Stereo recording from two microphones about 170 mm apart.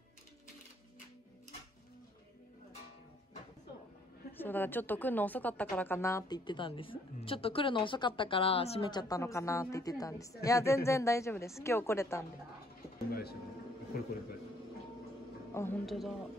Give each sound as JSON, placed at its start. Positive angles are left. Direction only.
{"t": 4.4, "sound": "a woman's voice", "side_deg": 10}
{"t": 13.1, "sound": "vehicle", "side_deg": 65}
{"t": 13.9, "sound": "a man's voice", "side_deg": 60}
{"t": 15.5, "sound": "a woman's voice", "side_deg": 15}
{"t": 15.8, "sound": "a woman's voice", "side_deg": 0}